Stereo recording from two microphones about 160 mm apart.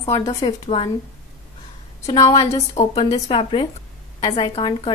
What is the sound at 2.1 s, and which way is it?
Speech, 25° left (ahead or behind).